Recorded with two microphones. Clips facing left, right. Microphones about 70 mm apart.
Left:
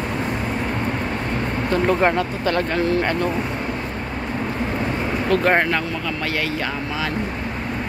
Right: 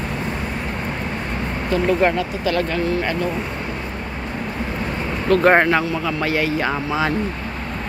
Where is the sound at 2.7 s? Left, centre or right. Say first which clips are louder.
Left 1 dB; left.